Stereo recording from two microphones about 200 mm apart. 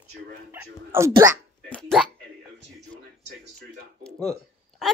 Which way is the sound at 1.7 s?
5° left (ahead or behind).